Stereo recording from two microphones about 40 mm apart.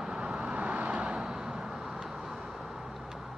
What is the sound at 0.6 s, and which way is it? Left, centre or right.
Vehicle, right.